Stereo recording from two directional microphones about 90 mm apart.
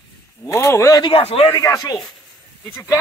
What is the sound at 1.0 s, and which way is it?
Speech, 90° left.